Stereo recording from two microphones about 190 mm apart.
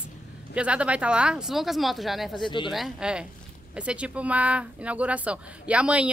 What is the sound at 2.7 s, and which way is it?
Speech, centre (ahead or behind).